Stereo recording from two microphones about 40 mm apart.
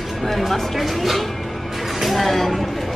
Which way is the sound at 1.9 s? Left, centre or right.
Centre.